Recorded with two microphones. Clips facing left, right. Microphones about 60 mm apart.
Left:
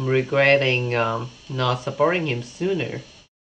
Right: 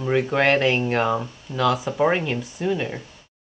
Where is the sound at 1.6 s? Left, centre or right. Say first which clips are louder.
Right 1 dB; centre.